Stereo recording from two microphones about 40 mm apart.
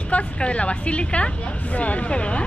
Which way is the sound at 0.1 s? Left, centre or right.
Left.